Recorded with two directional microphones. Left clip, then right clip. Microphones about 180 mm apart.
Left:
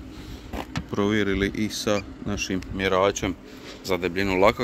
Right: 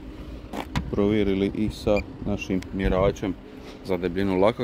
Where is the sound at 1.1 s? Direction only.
45° left (ahead or behind).